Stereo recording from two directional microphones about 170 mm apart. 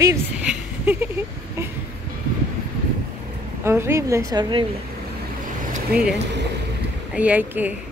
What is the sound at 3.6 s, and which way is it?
Speech, 15° right (ahead or behind).